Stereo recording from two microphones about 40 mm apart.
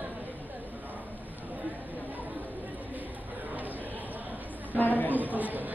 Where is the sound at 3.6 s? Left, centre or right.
Right.